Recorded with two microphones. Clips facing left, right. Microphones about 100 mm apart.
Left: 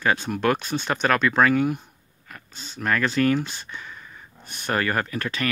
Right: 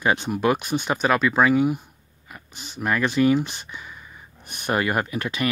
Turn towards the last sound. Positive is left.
turn(degrees=-15)  # may be behind; listen again after turning